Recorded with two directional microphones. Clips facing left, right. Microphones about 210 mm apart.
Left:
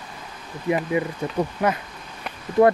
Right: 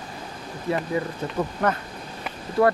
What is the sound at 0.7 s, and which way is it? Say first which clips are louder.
Speech: left 3 dB; 15° left (ahead or behind).